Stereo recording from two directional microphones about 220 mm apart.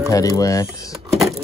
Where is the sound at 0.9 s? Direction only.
Centre (ahead or behind).